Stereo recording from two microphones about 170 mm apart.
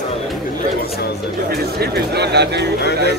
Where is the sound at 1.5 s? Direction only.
70° right (ahead or behind).